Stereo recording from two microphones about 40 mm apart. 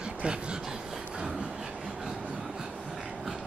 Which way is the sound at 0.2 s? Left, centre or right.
Right.